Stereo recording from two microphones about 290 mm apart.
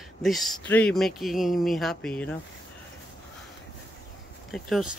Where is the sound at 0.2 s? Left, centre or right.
Centre.